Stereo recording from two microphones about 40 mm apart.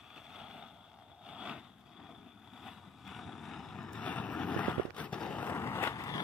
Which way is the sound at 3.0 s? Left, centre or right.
Centre.